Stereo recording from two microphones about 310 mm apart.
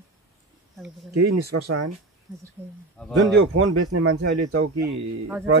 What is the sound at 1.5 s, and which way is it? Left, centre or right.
Speech, right.